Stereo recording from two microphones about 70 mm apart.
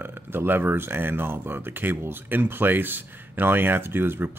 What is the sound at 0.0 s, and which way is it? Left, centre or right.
Speech, right.